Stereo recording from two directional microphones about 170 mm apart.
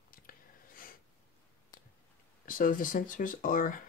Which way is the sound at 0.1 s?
55° left (ahead or behind).